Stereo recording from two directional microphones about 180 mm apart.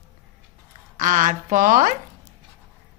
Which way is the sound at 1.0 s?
45° right (ahead or behind).